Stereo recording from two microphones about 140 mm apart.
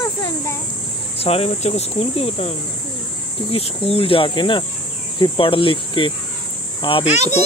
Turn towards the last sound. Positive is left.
turn(degrees=55)  # may be behind; listen again after turning